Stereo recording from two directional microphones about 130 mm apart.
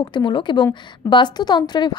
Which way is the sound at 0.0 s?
35° left (ahead or behind).